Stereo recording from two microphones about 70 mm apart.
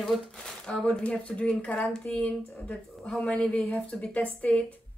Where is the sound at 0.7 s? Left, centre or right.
Centre.